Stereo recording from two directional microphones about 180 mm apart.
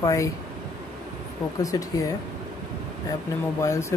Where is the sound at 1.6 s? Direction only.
20° left (ahead or behind).